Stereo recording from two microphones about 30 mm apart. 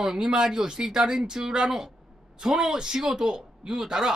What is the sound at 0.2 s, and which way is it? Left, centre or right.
Speech, right.